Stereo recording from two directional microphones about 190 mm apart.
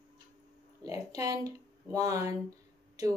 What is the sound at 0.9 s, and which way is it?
A woman's voice, 15° right (ahead or behind).